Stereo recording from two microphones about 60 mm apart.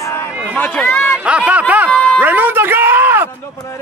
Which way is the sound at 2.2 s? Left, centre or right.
Right.